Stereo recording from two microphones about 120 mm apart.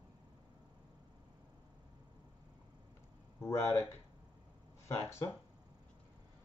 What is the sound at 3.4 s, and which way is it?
Speech, 20° left (ahead or behind).